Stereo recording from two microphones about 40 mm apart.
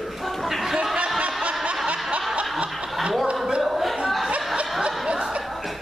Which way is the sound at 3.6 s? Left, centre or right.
Centre.